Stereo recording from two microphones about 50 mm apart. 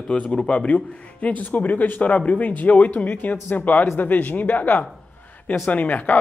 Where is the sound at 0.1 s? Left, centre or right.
Left.